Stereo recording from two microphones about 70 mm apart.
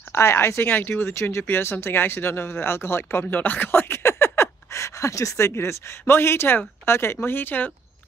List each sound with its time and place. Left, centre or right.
0.1 s speech: left